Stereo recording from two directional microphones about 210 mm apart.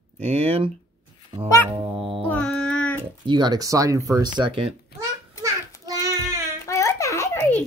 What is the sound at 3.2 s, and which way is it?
Speech, 20° right (ahead or behind).